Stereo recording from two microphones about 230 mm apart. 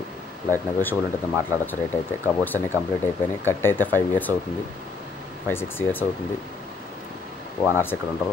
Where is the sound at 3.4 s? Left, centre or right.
Centre.